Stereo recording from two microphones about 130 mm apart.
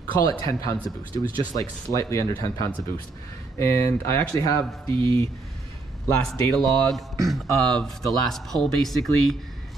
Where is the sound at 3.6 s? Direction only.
20° left (ahead or behind).